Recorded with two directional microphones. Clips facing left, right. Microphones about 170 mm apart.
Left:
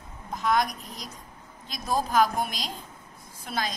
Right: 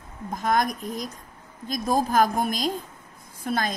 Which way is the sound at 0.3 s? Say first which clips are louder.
Right 2 dB; 45° right (ahead or behind).